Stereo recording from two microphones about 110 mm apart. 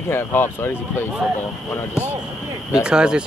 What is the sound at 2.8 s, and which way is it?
Speech, 10° right (ahead or behind).